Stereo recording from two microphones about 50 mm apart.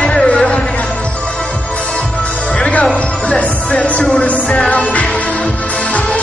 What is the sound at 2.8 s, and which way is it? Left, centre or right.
Music, left.